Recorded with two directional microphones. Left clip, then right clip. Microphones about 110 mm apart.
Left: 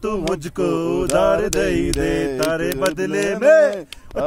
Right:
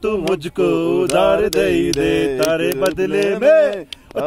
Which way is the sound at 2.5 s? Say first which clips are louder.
Right 3 dB; 5° right (ahead or behind).